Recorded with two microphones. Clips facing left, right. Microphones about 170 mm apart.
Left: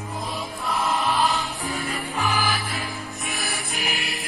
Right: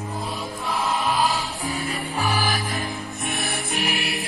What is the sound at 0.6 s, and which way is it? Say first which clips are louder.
Music: even; centre (ahead or behind).